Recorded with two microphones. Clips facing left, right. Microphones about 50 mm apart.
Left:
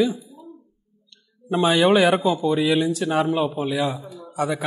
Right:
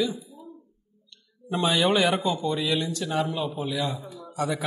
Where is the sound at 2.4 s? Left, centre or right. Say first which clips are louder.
Left 7 dB; centre.